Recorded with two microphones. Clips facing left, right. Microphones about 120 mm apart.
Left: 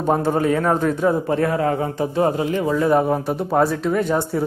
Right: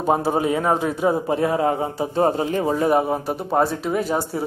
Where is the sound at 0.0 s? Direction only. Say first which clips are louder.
Left 1 dB; 10° right (ahead or behind); by 2.9 s 30° right (ahead or behind).